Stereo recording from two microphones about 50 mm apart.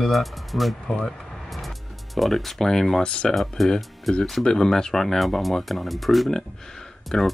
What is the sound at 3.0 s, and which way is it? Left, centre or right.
Speech, centre.